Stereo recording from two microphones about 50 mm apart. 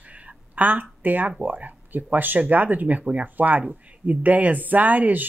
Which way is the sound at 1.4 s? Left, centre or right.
Right.